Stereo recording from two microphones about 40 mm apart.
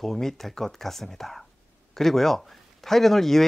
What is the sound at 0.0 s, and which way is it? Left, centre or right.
Speech, centre.